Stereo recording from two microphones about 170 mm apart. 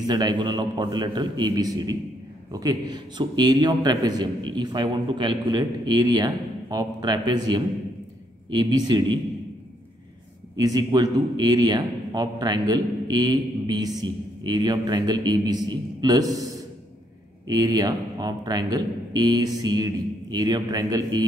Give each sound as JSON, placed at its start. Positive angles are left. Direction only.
{"t": 0.0, "sound": "a man's voice", "side_deg": -25}
{"t": 10.6, "sound": "a man's voice", "side_deg": -20}